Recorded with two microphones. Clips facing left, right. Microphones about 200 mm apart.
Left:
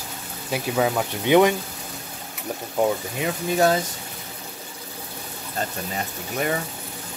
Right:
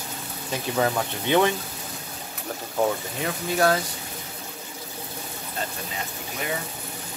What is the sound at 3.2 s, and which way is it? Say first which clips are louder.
Speech: left 2 dB; 20° left (ahead or behind).